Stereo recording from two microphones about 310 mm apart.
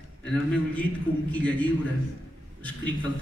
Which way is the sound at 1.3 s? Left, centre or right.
Centre.